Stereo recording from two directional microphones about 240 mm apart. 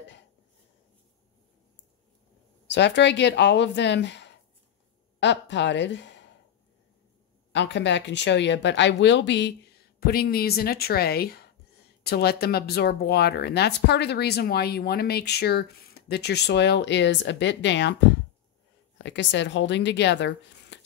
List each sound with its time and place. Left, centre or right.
2.7 s speech: left
7.5 s speech: left
19.0 s speech: left